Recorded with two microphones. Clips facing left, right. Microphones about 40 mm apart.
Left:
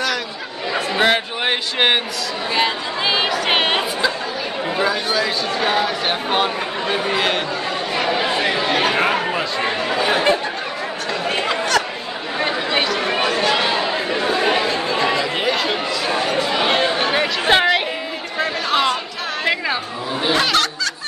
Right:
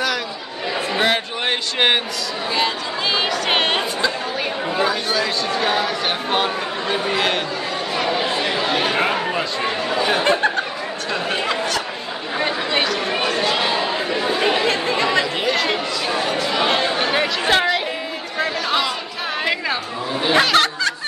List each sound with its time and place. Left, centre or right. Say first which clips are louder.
0.9 s a sound: left 3 dB; centre
2.5 s chatter: left 2 dB; centre
4.7 s a man's voice: left 1 dB; centre
7.9 s chatter: left 1 dB; centre
12.4 s chatter: left 1 dB; centre
15.4 s chatter: even; centre
17.5 s chatter: left 3 dB; left
19.4 s chatter: left 2 dB; centre
20.3 s music: right 4 dB; right